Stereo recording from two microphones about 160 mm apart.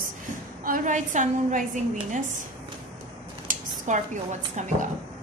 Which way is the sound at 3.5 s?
50° right (ahead or behind).